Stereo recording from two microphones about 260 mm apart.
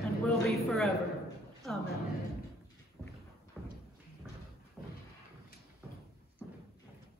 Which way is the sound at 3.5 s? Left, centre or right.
Centre.